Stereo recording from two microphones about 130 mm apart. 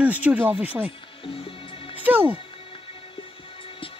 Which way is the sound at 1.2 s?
45° left (ahead or behind).